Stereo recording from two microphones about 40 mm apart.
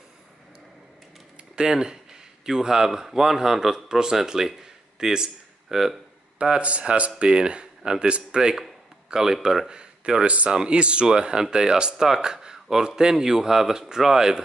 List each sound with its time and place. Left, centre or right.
1.5 s speech: centre
6.6 s a man's voice: right; by 9.7 s centre
9.7 s speech: right
12.5 s a sound: centre
12.8 s speech: centre